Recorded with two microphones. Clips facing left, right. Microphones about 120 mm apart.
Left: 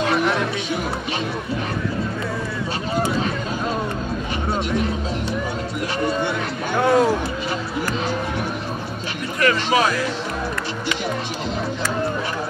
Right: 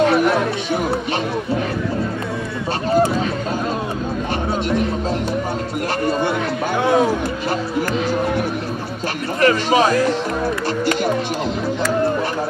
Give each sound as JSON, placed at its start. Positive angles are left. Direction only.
{"t": 6.8, "sound": "speech", "side_deg": 0}
{"t": 9.4, "sound": "speech", "side_deg": -35}